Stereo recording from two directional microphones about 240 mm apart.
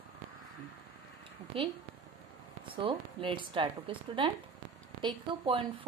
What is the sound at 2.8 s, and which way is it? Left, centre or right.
A woman's voice, right.